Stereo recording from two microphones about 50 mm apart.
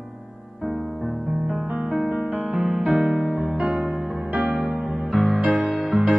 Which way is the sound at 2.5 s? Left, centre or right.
Centre.